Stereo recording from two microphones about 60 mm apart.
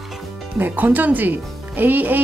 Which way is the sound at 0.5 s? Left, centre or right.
Right.